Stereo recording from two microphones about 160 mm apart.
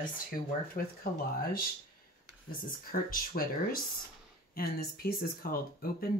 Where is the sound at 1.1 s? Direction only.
70° left (ahead or behind).